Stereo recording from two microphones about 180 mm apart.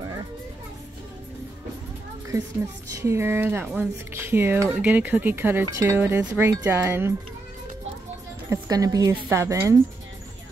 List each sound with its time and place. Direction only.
3.0 s speech: 15° right (ahead or behind)
8.5 s speech: 20° right (ahead or behind)